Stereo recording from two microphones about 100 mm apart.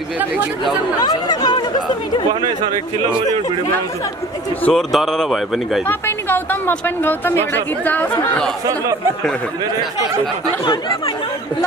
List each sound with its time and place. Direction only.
0.9 s speech: 45° left (ahead or behind)
4.6 s speech: 5° left (ahead or behind)
5.9 s speech: 20° left (ahead or behind)
10.6 s speech: 40° left (ahead or behind)